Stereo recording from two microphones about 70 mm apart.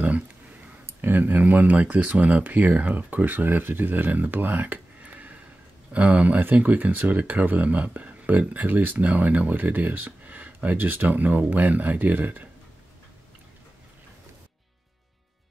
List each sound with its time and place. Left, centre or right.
0.0 s speech: right